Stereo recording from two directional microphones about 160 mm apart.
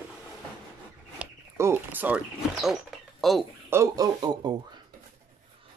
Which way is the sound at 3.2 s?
Centre (ahead or behind).